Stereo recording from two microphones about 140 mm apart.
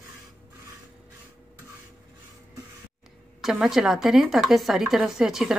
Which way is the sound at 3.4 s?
Centre (ahead or behind).